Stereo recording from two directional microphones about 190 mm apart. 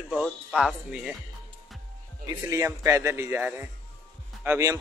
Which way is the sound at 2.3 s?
15° right (ahead or behind).